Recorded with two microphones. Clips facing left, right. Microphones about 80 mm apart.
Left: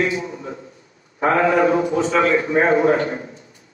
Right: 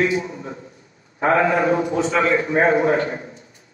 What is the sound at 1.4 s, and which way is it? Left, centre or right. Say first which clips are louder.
Speech: left 2 dB; left.